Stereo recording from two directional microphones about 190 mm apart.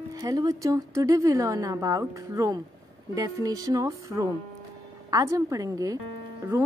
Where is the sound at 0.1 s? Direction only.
20° right (ahead or behind).